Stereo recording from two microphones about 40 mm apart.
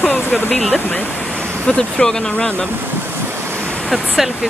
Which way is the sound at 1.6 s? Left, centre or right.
Centre.